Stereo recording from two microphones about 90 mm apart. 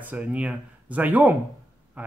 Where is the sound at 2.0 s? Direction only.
15° right (ahead or behind).